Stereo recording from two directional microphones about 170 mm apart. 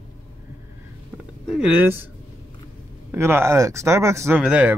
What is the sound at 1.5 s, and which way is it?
Speech, 5° right (ahead or behind).